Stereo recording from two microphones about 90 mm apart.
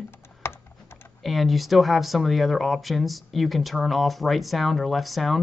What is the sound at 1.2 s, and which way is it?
Speech, centre (ahead or behind).